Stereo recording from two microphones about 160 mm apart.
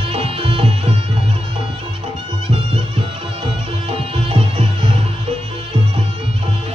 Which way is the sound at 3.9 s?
35° right (ahead or behind).